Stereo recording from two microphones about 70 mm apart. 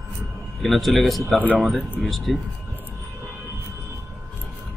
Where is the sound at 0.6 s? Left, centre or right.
Centre.